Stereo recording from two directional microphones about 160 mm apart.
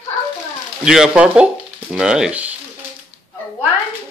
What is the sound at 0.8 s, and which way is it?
Speech, 5° right (ahead or behind).